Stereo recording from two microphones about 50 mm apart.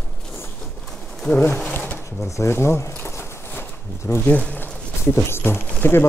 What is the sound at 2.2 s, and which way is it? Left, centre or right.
Speech, left.